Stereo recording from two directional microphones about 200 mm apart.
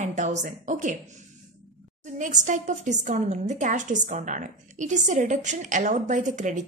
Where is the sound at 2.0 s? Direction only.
40° right (ahead or behind).